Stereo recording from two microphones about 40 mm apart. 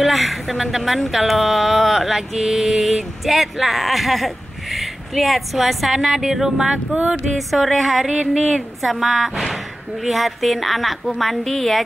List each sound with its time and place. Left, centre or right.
0.0 s mantra: centre
6.6 s speech: centre
7.3 s mantra: centre